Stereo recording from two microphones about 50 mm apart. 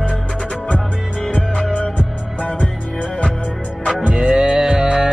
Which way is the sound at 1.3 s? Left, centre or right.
Left.